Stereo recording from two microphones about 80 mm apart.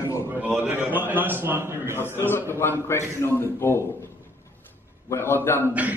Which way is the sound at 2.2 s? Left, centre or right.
Left.